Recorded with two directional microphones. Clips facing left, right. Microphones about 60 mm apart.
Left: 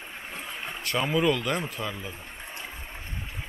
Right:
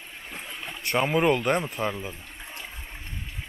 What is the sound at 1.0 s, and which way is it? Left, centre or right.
Speech, right.